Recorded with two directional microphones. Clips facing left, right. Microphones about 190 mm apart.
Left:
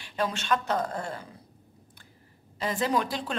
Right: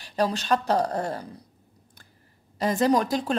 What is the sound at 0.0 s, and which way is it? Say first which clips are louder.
Speech: right 5 dB; 40° right (ahead or behind).